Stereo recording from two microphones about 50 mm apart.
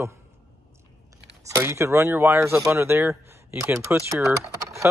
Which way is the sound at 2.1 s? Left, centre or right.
Right.